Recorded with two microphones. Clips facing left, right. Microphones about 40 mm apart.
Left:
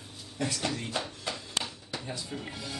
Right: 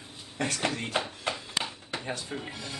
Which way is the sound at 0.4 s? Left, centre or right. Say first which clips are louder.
Right 2 dB; right.